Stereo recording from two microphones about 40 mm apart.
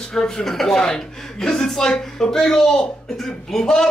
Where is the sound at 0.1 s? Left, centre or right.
Centre.